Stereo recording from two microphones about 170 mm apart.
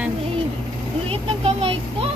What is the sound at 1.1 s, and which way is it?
Speech, 35° right (ahead or behind).